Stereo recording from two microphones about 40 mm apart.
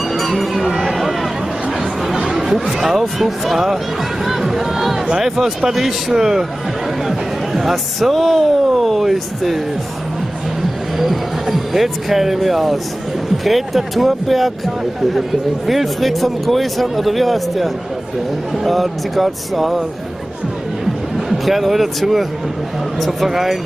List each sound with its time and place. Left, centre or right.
0.7 s a sound: centre
2.0 s a man's voice: centre
11.0 s speech: centre
21.3 s speech: centre